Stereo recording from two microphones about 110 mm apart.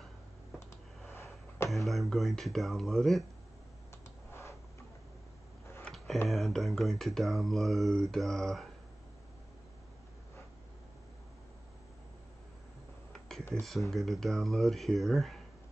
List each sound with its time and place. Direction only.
1.1 s a sound: 25° left (ahead or behind)
1.7 s speech: centre (ahead or behind)
4.3 s tick-tock: 25° left (ahead or behind)
6.2 s speech: centre (ahead or behind)
13.6 s speech: centre (ahead or behind)